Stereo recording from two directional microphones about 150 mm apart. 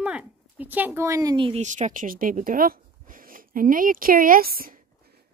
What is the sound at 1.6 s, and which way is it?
Speech, 55° right (ahead or behind).